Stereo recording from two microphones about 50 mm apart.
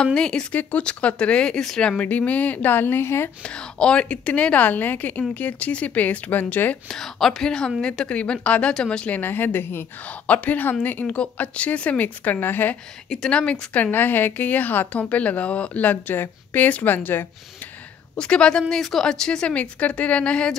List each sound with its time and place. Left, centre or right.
0.0 s a woman's voice: centre
0.6 s a woman's voice: left
2.0 s a woman's voice: left
3.4 s a woman's voice: centre; by 6.8 s left
6.9 s a woman's voice: centre
9.1 s a woman's voice: left
10.0 s a woman's voice: left
13.3 s a woman's voice: left
13.9 s a woman's voice: left
18.1 s a woman's voice: centre